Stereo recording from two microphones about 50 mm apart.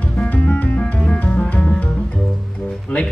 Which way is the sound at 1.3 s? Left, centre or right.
Centre.